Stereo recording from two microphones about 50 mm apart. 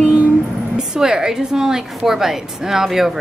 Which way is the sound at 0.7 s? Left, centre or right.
Centre.